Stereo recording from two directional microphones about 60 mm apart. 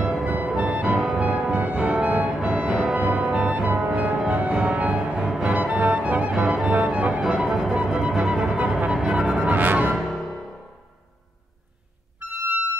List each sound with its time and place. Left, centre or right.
0.0 s music: centre
1.1 s music: centre
1.8 s music: centre
2.7 s music: centre
3.3 s music: right
6.3 s music: centre
9.5 s music: right
12.2 s music: right